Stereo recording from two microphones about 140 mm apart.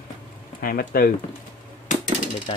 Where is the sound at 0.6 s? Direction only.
90° left.